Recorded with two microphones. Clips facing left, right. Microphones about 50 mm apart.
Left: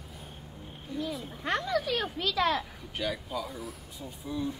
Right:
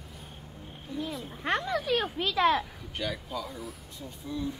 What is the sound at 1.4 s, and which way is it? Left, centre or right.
Speech, right.